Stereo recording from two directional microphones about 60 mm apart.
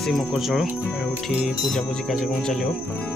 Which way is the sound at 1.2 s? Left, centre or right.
Centre.